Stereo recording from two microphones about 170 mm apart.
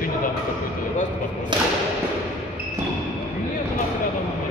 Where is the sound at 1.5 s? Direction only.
25° right (ahead or behind).